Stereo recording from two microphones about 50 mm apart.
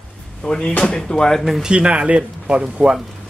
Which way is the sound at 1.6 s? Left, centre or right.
Right.